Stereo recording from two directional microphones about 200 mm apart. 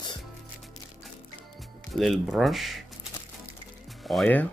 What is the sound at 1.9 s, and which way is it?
Speech, centre (ahead or behind).